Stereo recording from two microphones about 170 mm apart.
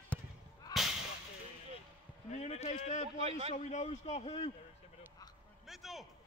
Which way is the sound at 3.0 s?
40° right (ahead or behind).